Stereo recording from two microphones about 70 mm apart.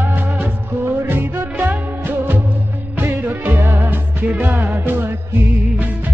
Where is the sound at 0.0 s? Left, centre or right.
Right.